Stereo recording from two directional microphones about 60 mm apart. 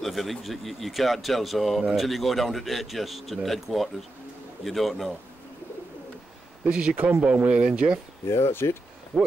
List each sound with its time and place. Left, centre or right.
0.0 s speech: centre
6.7 s speech: centre
8.3 s speech: left
9.1 s speech: centre